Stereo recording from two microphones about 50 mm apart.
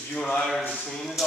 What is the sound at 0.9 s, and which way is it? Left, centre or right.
Speech, centre.